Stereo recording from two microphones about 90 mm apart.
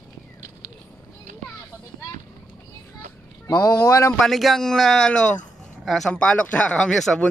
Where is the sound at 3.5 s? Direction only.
40° left (ahead or behind).